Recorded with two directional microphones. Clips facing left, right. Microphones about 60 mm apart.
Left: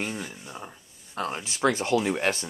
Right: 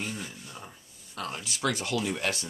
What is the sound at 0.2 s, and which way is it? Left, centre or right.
Speech, left.